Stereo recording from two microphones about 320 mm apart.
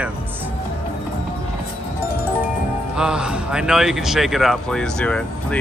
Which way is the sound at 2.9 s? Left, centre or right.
Centre.